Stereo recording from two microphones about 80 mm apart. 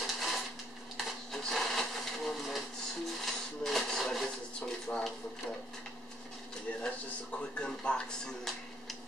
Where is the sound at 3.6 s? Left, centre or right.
Centre.